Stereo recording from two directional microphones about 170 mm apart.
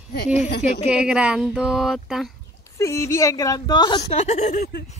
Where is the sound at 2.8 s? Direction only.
20° left (ahead or behind); by 4.6 s 45° left (ahead or behind).